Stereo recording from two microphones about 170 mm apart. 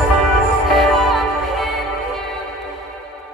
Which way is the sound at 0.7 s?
Centre (ahead or behind).